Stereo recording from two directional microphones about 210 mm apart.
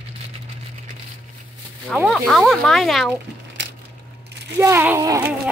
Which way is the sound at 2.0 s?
Centre (ahead or behind).